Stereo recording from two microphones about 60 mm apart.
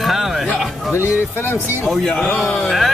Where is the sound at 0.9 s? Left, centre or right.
Left.